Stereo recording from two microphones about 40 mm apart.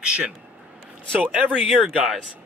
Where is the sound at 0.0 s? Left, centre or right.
Right.